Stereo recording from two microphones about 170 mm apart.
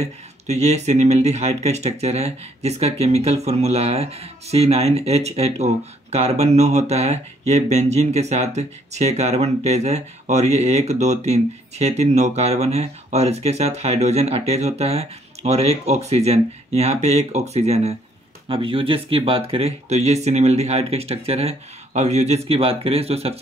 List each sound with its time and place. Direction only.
0.0 s speech: 40° right (ahead or behind)